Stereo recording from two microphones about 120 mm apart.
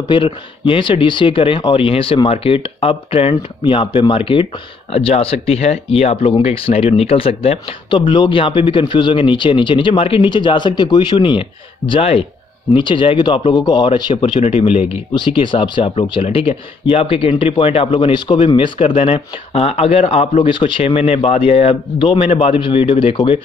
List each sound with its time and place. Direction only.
0.1 s speech: 45° left (ahead or behind)
11.9 s speech: 55° left (ahead or behind)
12.7 s speech: 45° left (ahead or behind)
14.4 s speech: 50° left (ahead or behind)